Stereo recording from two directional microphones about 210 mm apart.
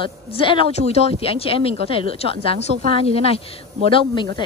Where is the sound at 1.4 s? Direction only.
25° left (ahead or behind).